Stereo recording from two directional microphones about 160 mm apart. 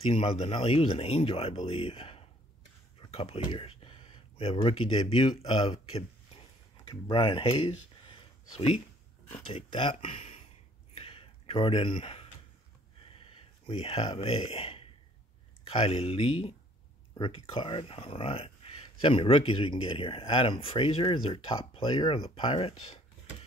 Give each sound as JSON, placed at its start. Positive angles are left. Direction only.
{"t": 0.0, "sound": "speech", "side_deg": 40}
{"t": 11.0, "sound": "a sound", "side_deg": 35}
{"t": 13.1, "sound": "speech", "side_deg": 35}